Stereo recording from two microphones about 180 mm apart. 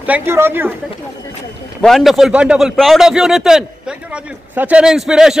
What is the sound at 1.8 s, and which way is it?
A man's voice, centre (ahead or behind).